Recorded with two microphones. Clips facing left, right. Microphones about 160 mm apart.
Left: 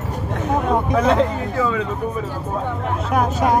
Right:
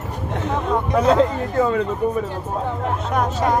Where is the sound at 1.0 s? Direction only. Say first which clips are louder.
Right 1 dB; 45° right (ahead or behind).